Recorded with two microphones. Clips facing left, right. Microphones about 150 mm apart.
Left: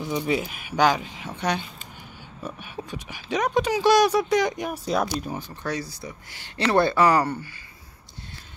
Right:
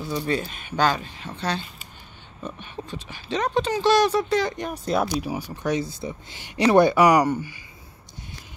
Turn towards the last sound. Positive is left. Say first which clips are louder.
# right 3 dB
turn(degrees=-15)  # may be behind; listen again after turning